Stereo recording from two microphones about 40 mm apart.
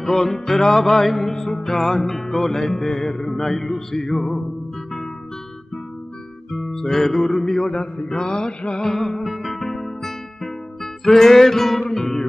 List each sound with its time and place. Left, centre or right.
0.0 s music: centre
6.5 s music: centre
8.1 s male singing: left
8.9 s music: centre
9.6 s music: centre